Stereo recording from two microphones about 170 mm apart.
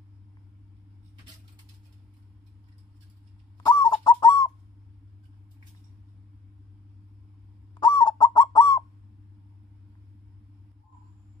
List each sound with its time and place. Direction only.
3.5 s fowl: 25° left (ahead or behind)
4.0 s bird: 25° left (ahead or behind)
7.7 s bird: 25° left (ahead or behind)